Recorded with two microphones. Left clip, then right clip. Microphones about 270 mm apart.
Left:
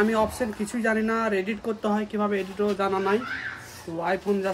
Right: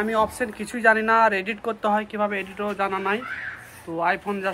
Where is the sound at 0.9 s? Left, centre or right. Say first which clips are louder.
Right 6 dB; right.